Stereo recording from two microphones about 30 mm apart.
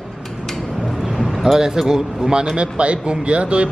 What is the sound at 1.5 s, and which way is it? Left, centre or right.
Speech, right.